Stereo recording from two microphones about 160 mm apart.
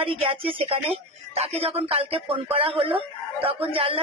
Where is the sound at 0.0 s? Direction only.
35° right (ahead or behind).